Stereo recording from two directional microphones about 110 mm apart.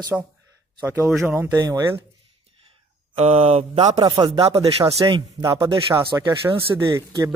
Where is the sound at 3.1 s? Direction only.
75° right (ahead or behind).